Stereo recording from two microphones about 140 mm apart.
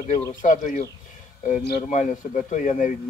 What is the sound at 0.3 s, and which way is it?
Speech, 70° left (ahead or behind).